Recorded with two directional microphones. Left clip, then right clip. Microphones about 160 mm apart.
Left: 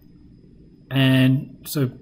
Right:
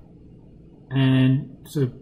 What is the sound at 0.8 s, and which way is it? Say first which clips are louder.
Speech: left 3 dB; 15° left (ahead or behind).